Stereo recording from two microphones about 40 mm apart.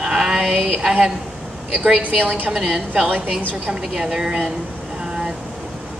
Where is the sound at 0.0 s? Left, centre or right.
Centre.